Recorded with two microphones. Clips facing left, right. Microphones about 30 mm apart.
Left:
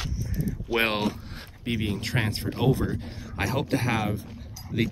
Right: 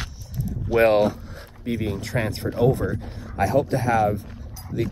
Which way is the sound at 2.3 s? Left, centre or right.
Left.